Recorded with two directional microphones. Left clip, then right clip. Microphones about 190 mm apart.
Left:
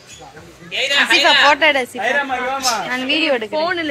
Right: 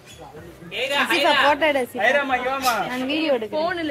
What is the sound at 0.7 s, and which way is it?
Speech, 60° right (ahead or behind).